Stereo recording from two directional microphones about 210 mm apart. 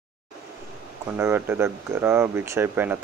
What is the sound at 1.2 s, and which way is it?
Speech, 10° right (ahead or behind).